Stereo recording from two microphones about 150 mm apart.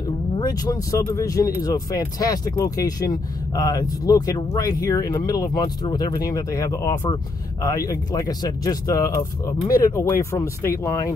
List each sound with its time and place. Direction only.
0.4 s speech: 25° left (ahead or behind)